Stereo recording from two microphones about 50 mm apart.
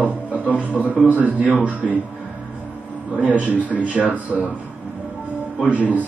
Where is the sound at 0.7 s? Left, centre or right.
Left.